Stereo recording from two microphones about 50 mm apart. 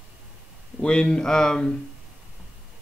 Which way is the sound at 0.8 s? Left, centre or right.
Centre.